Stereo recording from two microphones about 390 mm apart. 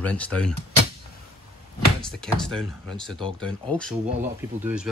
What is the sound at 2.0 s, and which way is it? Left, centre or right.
Speech, centre.